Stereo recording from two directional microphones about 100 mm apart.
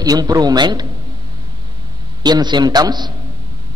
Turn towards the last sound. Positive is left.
turn(degrees=-45)  # may be behind; listen again after turning